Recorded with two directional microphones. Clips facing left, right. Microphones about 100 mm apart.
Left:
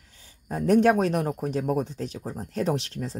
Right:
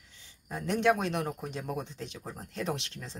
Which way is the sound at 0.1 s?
45° left (ahead or behind).